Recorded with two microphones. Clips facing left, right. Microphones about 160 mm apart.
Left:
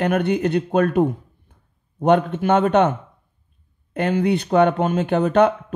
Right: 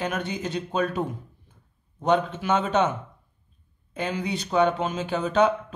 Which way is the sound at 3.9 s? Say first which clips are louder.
Left 9 dB; 60° left (ahead or behind).